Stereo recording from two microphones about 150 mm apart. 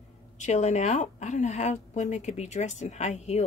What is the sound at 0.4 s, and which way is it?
Speech, 50° left (ahead or behind).